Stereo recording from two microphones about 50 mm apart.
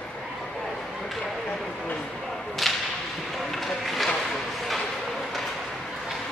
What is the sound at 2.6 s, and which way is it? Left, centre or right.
Whip, centre.